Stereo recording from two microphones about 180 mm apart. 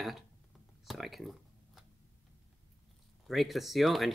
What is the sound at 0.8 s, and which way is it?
Speech, centre (ahead or behind).